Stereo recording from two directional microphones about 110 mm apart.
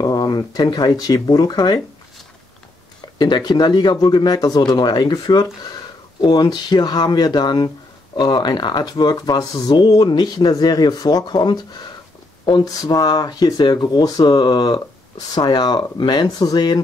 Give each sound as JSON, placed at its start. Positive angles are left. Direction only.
{"t": 0.0, "sound": "speech", "side_deg": 40}
{"t": 3.2, "sound": "speech", "side_deg": 40}